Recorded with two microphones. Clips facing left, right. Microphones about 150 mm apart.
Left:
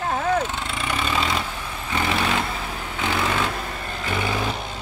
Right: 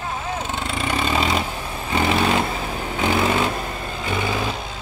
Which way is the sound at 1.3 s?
20° right (ahead or behind).